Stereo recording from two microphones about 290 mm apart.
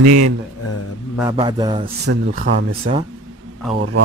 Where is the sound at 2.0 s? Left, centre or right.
Right.